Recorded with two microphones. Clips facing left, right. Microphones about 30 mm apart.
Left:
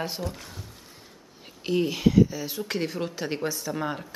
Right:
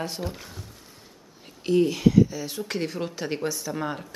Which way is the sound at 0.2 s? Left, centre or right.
Centre.